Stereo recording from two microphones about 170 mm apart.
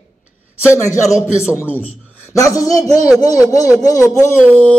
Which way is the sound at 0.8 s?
20° left (ahead or behind).